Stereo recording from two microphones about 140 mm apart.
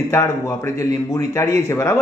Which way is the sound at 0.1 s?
20° left (ahead or behind).